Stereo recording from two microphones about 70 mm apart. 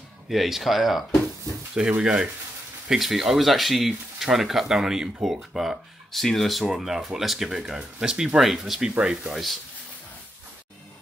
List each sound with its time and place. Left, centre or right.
0.3 s speech: centre
1.8 s speech: centre
2.9 s speech: centre